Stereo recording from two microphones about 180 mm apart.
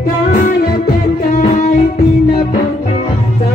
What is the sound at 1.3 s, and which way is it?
Music, 40° left (ahead or behind).